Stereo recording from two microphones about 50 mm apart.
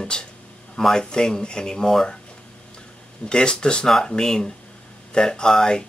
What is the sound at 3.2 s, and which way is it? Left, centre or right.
Speech, centre.